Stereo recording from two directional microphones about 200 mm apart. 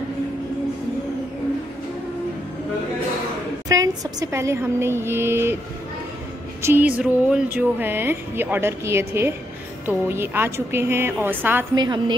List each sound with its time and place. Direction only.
3.6 s speech: 20° right (ahead or behind)
6.6 s speech: 10° right (ahead or behind)
11.7 s a woman's voice: 20° right (ahead or behind)